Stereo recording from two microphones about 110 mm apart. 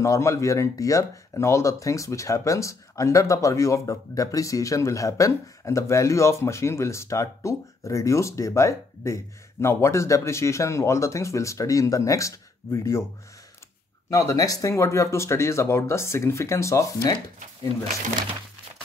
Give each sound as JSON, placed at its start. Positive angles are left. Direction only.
{"t": 0.0, "sound": "speech", "side_deg": 30}
{"t": 14.1, "sound": "speech", "side_deg": 30}